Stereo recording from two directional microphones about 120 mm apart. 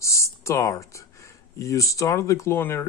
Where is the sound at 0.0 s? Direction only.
25° left (ahead or behind).